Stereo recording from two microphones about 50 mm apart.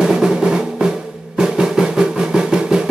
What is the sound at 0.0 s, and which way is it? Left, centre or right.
Drum, centre.